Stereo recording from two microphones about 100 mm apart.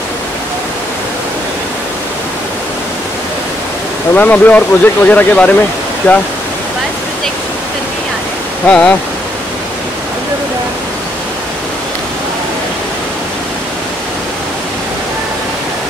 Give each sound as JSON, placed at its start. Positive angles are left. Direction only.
{"t": 4.1, "sound": "speech", "side_deg": 15}
{"t": 8.6, "sound": "speech", "side_deg": 10}